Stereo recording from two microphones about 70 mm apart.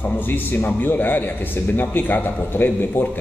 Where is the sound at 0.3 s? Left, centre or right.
Left.